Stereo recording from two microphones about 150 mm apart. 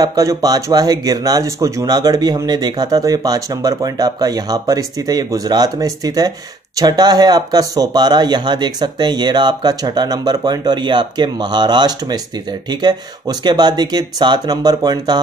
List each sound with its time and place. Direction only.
0.0 s speech: 25° right (ahead or behind)